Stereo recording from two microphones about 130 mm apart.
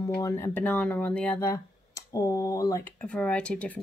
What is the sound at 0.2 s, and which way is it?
Speech, 20° left (ahead or behind).